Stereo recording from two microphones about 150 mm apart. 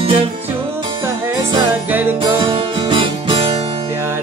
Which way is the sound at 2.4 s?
35° right (ahead or behind).